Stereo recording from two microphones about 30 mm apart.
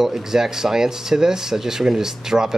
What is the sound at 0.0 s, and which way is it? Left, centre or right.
Speech, centre.